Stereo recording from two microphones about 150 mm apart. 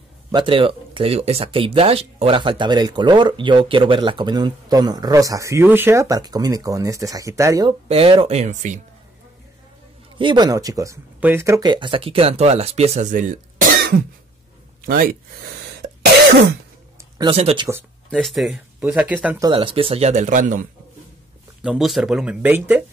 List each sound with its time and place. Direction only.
0.3 s speech: 35° right (ahead or behind)
7.9 s speech: 40° right (ahead or behind)
10.1 s speech: 30° right (ahead or behind); by 15.1 s 70° right (ahead or behind)
17.7 s speech: 15° right (ahead or behind)
18.1 s speech: centre (ahead or behind)
19.5 s speech: 35° right (ahead or behind); by 20.6 s 60° right (ahead or behind)
21.6 s speech: centre (ahead or behind)